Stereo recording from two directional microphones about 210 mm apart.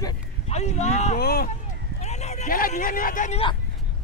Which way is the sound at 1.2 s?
45° left (ahead or behind).